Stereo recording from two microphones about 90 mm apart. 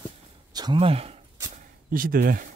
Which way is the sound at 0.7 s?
90° right.